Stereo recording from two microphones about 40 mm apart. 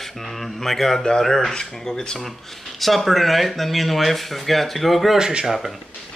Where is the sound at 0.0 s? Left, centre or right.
Centre.